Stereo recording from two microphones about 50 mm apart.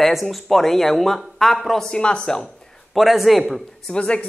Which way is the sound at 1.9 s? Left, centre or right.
Centre.